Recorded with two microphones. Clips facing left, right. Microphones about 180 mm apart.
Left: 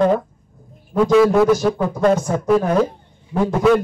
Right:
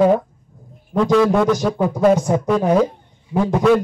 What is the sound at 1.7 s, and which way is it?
Speech, 15° right (ahead or behind).